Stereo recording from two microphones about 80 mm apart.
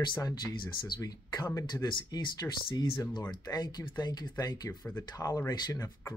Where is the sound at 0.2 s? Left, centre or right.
Left.